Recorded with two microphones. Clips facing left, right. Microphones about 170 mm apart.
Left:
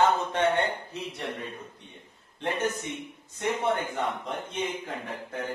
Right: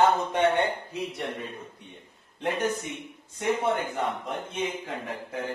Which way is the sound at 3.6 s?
Centre (ahead or behind).